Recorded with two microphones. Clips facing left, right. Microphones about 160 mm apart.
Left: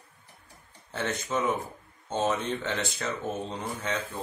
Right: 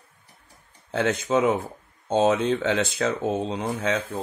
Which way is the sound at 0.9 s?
80° right.